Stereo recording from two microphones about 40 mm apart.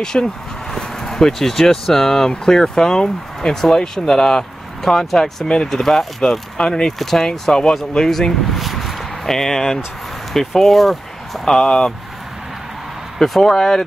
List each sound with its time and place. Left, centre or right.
0.0 s speech: centre
9.2 s speech: centre
11.4 s speech: centre
13.2 s speech: centre